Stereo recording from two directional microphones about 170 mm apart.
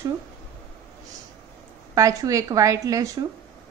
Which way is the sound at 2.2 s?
20° right (ahead or behind).